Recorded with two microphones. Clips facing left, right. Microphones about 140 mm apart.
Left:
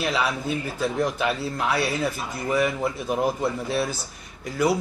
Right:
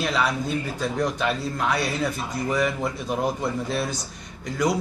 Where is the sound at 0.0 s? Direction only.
5° left (ahead or behind).